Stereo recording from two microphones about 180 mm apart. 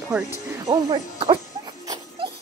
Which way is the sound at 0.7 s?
25° right (ahead or behind).